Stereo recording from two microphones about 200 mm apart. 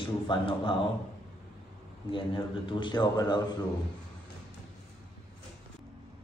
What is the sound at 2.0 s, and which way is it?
A man's voice, 25° left (ahead or behind).